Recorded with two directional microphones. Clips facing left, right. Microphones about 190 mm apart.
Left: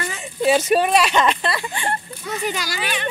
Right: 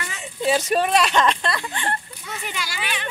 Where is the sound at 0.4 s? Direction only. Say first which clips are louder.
Left 4 dB; 5° left (ahead or behind).